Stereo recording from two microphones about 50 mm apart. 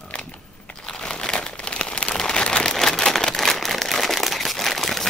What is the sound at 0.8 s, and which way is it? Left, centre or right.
Crumpling, centre.